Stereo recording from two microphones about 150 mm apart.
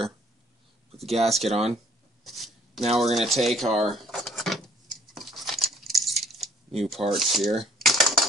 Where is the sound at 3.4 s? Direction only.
Centre (ahead or behind).